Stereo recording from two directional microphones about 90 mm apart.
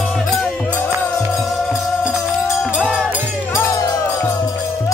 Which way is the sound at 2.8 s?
10° left (ahead or behind).